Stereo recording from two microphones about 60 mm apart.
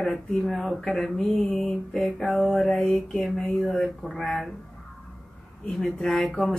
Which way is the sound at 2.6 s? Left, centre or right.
Left.